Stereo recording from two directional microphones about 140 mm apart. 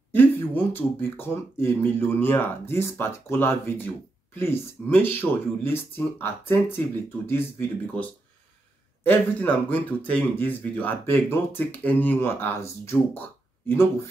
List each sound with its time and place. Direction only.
0.1 s speech: 15° left (ahead or behind)